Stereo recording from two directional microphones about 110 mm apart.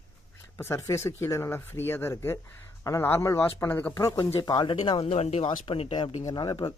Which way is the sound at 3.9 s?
35° left (ahead or behind).